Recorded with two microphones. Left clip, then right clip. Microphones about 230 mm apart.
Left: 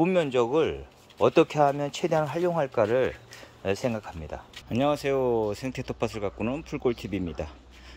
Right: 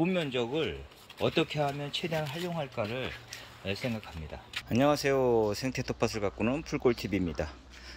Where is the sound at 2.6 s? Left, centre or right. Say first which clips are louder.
Left 11 dB; left.